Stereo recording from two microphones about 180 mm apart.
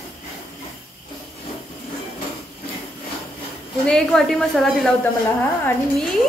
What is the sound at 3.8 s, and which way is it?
A woman's voice, 5° left (ahead or behind).